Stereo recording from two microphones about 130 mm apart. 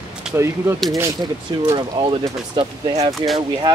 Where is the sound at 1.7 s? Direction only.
40° right (ahead or behind).